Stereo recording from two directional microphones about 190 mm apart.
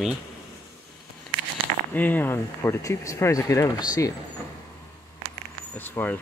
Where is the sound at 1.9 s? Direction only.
10° left (ahead or behind).